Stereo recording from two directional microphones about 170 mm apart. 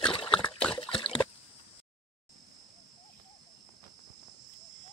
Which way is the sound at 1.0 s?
30° left (ahead or behind).